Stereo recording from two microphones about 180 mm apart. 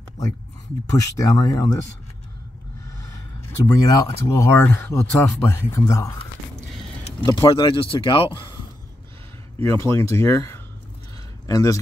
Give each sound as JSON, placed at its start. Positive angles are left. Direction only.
{"t": 0.8, "sound": "speech", "side_deg": 20}
{"t": 3.6, "sound": "speech", "side_deg": 20}
{"t": 7.2, "sound": "speech", "side_deg": 25}
{"t": 9.6, "sound": "speech", "side_deg": 15}